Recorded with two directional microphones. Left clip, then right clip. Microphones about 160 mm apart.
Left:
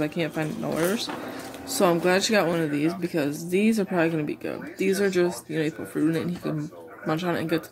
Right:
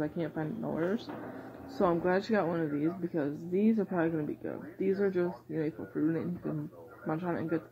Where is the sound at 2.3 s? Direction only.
40° left (ahead or behind).